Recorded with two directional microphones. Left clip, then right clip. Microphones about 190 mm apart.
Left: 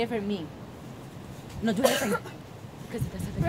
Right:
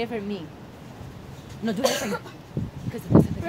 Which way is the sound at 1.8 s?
30° left (ahead or behind).